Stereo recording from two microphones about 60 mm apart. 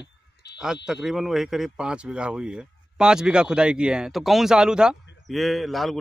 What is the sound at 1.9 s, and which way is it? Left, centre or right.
Speech, centre.